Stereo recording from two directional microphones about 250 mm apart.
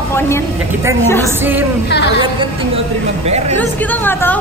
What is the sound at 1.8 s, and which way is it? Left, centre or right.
Speech, left.